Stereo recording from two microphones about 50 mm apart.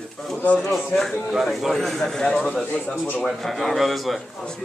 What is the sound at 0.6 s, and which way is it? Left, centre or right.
A man's voice, centre.